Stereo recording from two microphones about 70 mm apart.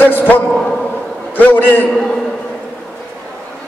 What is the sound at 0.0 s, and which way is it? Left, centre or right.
Speech, left.